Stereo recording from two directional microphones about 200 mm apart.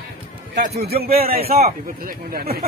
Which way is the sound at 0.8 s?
50° right (ahead or behind).